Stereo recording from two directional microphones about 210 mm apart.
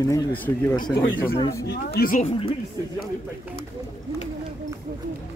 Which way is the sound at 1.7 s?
45° left (ahead or behind).